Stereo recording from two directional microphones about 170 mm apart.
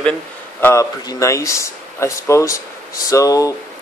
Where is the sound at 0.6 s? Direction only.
15° left (ahead or behind).